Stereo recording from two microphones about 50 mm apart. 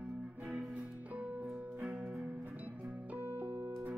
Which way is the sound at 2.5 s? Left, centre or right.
Right.